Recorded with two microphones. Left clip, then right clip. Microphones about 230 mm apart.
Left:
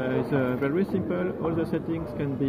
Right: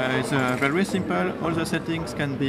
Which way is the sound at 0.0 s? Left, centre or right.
Right.